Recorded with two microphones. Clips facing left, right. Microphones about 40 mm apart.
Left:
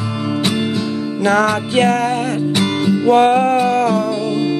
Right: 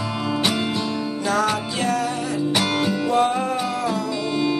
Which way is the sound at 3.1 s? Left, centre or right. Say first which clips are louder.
Left 10 dB; left.